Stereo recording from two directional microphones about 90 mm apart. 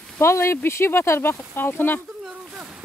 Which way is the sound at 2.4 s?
15° right (ahead or behind).